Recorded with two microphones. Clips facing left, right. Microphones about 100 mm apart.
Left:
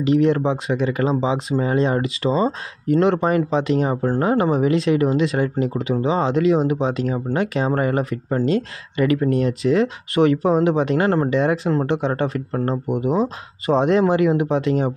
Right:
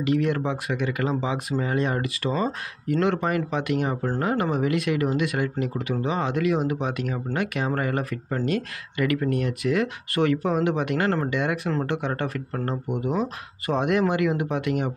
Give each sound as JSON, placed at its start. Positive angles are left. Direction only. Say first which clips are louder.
{"t": 0.0, "sound": "speech", "louder": "left 6 dB", "side_deg": 25}